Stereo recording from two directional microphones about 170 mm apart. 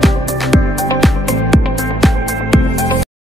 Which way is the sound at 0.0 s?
Centre (ahead or behind).